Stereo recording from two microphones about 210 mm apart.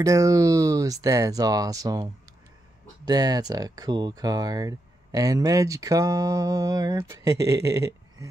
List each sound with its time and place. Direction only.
0.0 s speech: 15° right (ahead or behind)
3.1 s speech: 20° right (ahead or behind)